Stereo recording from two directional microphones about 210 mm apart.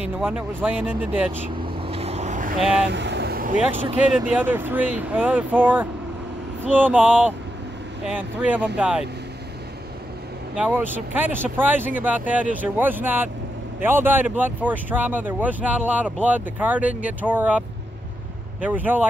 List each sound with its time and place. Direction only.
0.2 s speech: 10° right (ahead or behind)
1.9 s vehicle: 30° right (ahead or behind)
2.9 s vehicle: 55° right (ahead or behind)
3.5 s speech: 5° right (ahead or behind)
8.1 s speech: 10° right (ahead or behind)
10.5 s speech: 5° right (ahead or behind)